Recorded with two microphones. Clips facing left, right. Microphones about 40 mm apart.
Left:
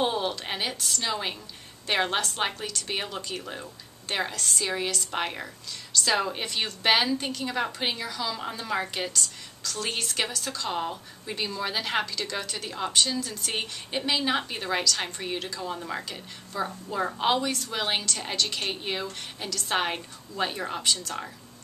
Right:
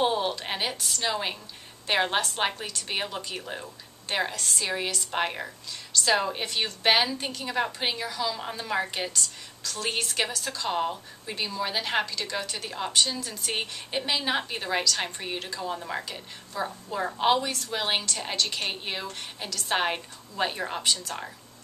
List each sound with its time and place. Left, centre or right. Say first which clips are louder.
0.0 s a woman's voice: right 1 dB; centre